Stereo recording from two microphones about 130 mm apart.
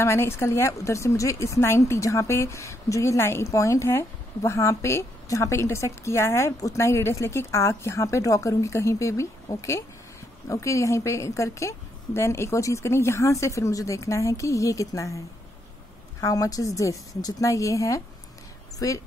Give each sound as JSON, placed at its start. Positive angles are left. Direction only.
{"t": 0.0, "sound": "speech", "side_deg": 20}